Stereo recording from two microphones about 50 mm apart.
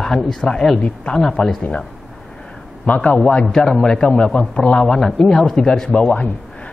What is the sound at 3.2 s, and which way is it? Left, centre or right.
A man's voice, centre.